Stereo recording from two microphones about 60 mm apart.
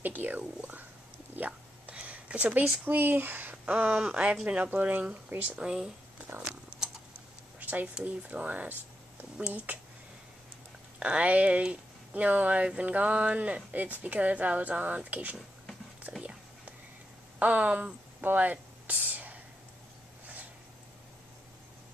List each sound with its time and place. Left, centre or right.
0.0 s a sound: right
0.4 s whispering: right
1.3 s a sound: right
2.8 s speech: right
5.6 s speech: centre
7.6 s speech: right
11.0 s speech: right
17.4 s speech: right
18.2 s a sound: right